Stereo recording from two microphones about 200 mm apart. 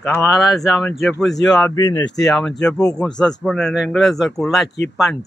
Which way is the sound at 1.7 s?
20° left (ahead or behind).